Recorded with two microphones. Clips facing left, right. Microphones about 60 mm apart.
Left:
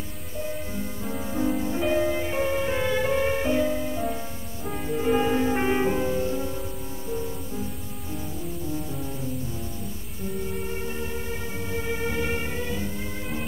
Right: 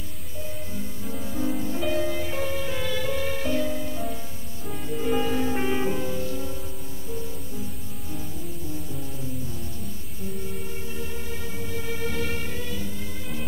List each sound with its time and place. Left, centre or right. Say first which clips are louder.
1.0 s music: left 3 dB; left
11.0 s music: left 3 dB; left